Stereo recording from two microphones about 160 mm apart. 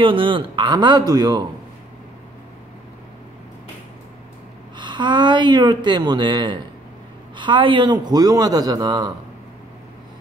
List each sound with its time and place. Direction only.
0.0 s speech: 30° right (ahead or behind)
4.7 s speech: 30° right (ahead or behind)